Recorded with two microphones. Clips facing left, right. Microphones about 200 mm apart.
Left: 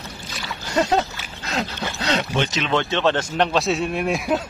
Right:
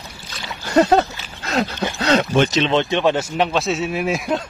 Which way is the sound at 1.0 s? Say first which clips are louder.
Right 4 dB; 60° right (ahead or behind).